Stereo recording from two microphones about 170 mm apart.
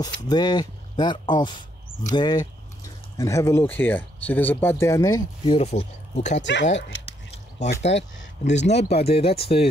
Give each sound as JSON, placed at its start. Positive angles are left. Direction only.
{"t": 0.0, "sound": "speech", "side_deg": 25}
{"t": 5.5, "sound": "speech", "side_deg": 35}
{"t": 6.4, "sound": "speech", "side_deg": 90}
{"t": 7.5, "sound": "speech", "side_deg": 40}